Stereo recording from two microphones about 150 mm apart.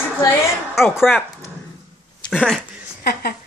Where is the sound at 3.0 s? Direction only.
90° left.